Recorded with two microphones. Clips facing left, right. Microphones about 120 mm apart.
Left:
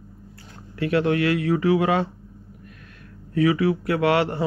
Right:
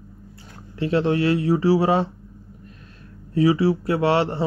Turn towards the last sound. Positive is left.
turn(degrees=-30)  # may be behind; listen again after turning